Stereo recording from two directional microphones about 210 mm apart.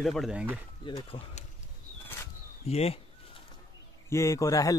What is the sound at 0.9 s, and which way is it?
Speech, 25° left (ahead or behind).